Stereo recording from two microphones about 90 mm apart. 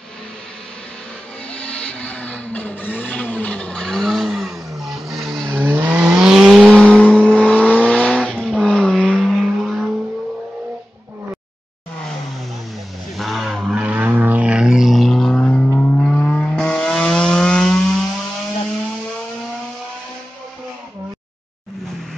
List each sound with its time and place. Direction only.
1.5 s vehicle: 15° left (ahead or behind)
5.6 s vehicle: 20° right (ahead or behind)
6.2 s vehicle: 5° right (ahead or behind)
6.9 s vehicle: 15° left (ahead or behind)
13.2 s vehicle: centre (ahead or behind)
13.8 s vehicle: 15° right (ahead or behind); by 17.7 s 5° left (ahead or behind)